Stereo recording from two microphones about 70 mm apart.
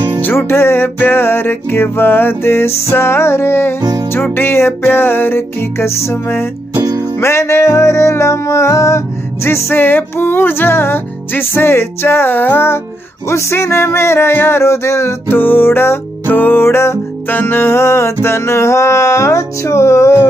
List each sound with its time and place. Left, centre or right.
0.2 s music: left